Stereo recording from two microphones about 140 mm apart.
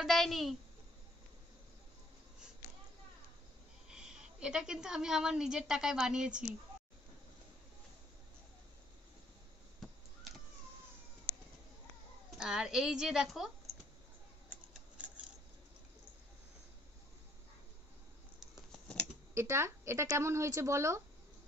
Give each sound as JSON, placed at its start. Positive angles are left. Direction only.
{"t": 0.0, "sound": "a woman's voice", "side_deg": 0}
{"t": 3.9, "sound": "a woman's voice", "side_deg": -5}
{"t": 12.4, "sound": "a woman's voice", "side_deg": -5}
{"t": 18.4, "sound": "scissors", "side_deg": 5}
{"t": 19.3, "sound": "speech", "side_deg": -20}